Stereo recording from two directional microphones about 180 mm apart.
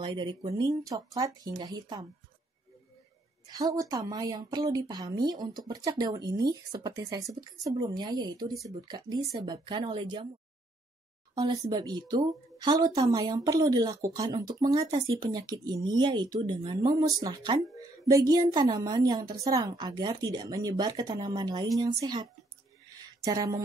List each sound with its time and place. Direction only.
0.0 s a woman's voice: 25° right (ahead or behind)
3.4 s a woman's voice: 20° right (ahead or behind)
11.7 s a woman's voice: 25° right (ahead or behind)